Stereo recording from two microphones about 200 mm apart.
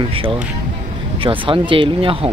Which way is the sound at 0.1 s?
25° right (ahead or behind).